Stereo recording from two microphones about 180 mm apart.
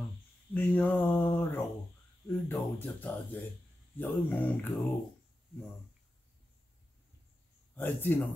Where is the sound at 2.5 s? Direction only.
10° left (ahead or behind).